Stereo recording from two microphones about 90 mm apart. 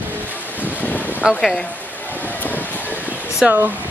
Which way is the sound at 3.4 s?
20° right (ahead or behind).